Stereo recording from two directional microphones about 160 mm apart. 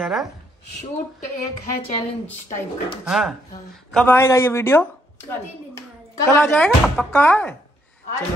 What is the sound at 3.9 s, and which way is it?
Speech, 10° left (ahead or behind).